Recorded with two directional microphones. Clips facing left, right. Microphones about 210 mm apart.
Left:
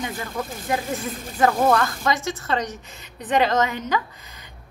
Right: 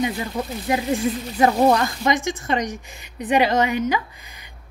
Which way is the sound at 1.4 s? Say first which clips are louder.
Right 2 dB; 15° right (ahead or behind).